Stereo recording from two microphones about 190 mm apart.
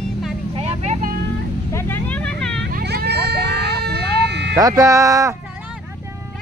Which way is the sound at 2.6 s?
60° right (ahead or behind).